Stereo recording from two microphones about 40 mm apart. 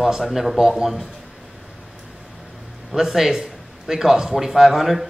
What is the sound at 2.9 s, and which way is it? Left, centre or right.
A man's voice, centre.